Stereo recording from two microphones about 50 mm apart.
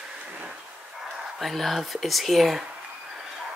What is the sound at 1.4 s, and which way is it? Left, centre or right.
Speech, centre.